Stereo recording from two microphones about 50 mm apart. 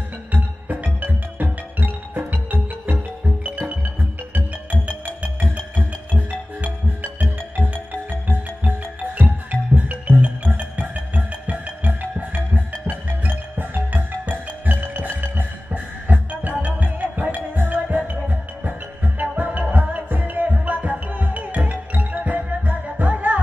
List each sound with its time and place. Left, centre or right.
0.3 s music: right
5.6 s music: left
6.6 s music: right